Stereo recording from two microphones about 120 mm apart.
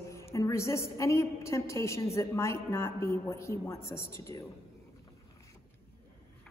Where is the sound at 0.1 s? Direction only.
25° left (ahead or behind).